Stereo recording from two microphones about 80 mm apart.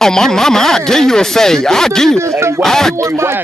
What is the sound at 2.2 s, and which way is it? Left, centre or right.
Speech, right.